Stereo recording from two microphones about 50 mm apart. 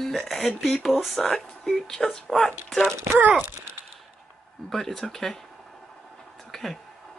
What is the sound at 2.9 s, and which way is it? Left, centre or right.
Speech, right.